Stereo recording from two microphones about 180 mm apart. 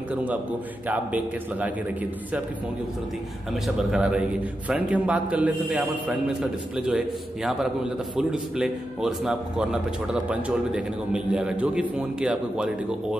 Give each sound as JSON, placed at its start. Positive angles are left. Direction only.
{"t": 0.1, "sound": "a man's voice", "side_deg": -10}
{"t": 3.6, "sound": "a man's voice", "side_deg": -5}